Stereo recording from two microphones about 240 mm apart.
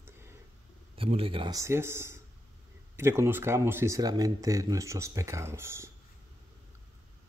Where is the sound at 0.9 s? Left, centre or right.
Right.